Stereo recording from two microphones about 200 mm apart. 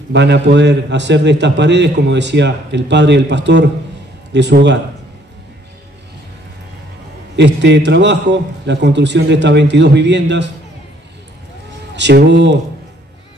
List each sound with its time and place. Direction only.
0.1 s a man's voice: 60° right (ahead or behind)
7.3 s a man's voice: 60° right (ahead or behind)
11.9 s a man's voice: 60° right (ahead or behind)